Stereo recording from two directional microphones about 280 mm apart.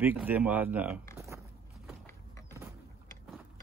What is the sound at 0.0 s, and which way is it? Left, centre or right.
Speech, centre.